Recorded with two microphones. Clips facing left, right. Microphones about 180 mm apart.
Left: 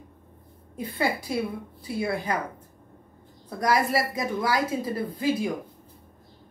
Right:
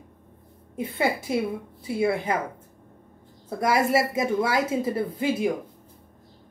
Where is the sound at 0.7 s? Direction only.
25° right (ahead or behind).